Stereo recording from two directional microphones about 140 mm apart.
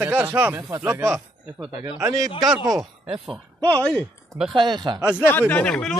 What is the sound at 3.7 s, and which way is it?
Speech, 5° left (ahead or behind).